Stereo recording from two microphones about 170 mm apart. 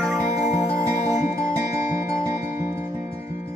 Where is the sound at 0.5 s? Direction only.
20° right (ahead or behind).